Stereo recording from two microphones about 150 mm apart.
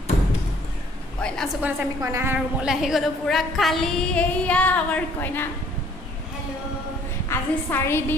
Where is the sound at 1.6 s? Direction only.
15° right (ahead or behind); by 5.4 s 10° left (ahead or behind).